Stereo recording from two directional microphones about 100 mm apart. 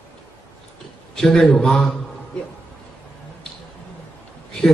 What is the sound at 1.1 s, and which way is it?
Speech, 5° left (ahead or behind).